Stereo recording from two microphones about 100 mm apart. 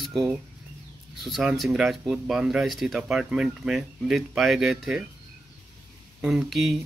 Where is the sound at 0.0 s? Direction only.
Centre (ahead or behind).